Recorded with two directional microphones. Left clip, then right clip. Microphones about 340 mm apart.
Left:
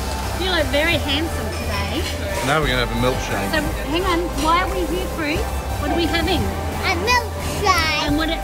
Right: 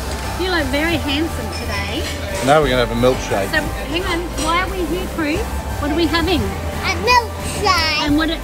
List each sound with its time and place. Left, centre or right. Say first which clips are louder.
2.4 s speech: right 6 dB; centre
3.5 s speech: right 1 dB; centre
5.9 s speech: right 3 dB; right
6.8 s a child's voice: right 4 dB; centre
8.0 s speech: right 3 dB; right